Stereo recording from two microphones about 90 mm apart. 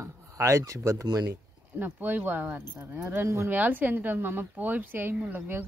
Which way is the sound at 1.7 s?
20° right (ahead or behind).